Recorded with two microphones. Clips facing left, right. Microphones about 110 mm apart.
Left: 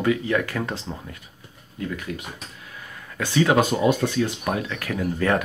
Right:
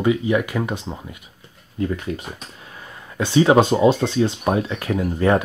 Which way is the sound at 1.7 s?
30° right (ahead or behind).